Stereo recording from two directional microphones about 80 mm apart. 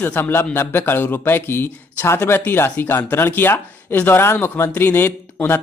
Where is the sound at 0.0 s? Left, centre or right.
Left.